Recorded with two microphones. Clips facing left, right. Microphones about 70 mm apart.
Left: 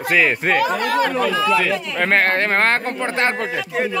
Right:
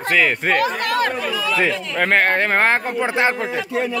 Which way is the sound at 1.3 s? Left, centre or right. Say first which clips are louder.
Left 5 dB; left.